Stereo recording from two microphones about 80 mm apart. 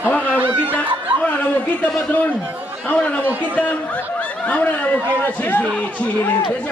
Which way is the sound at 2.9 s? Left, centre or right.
Centre.